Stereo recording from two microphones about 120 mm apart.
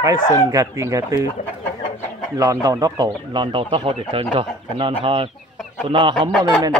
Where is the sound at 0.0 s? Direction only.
25° right (ahead or behind).